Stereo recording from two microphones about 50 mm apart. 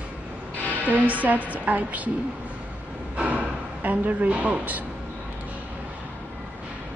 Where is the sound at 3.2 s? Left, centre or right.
Right.